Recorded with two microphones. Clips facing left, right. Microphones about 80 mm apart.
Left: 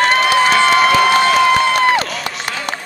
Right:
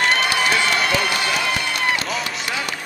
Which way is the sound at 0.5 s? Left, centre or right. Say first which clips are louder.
Left 8 dB; left.